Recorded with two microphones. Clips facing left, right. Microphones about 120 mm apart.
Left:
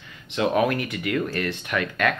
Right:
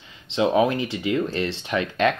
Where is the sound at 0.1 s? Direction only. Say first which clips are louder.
Right 2 dB; 25° right (ahead or behind).